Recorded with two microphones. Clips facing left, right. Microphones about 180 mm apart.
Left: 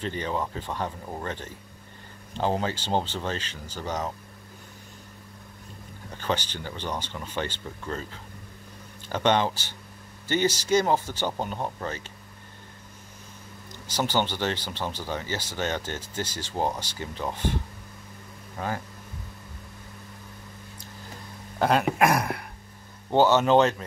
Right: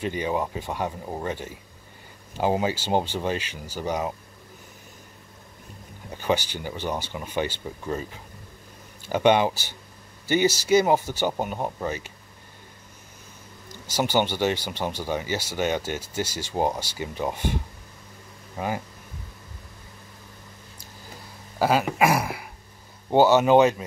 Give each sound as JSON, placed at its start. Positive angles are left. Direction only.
{"t": 0.0, "sound": "speech", "side_deg": -10}
{"t": 6.0, "sound": "speech", "side_deg": -10}
{"t": 13.9, "sound": "speech", "side_deg": -10}
{"t": 18.6, "sound": "speech", "side_deg": -15}
{"t": 21.5, "sound": "speech", "side_deg": -5}